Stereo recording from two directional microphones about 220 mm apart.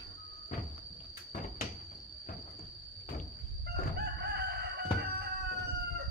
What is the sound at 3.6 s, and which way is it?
Crowing, 45° right (ahead or behind).